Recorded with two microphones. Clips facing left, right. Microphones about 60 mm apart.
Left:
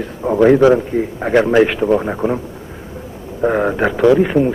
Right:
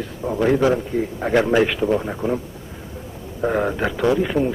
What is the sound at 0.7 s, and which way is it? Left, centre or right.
A man's voice, left.